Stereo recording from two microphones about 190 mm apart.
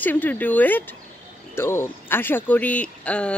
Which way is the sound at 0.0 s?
10° left (ahead or behind).